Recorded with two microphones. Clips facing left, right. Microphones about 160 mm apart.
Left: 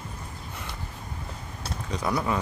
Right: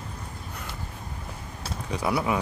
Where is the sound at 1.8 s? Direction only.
10° right (ahead or behind).